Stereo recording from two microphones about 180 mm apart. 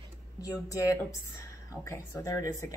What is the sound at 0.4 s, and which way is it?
A woman's voice, 20° left (ahead or behind).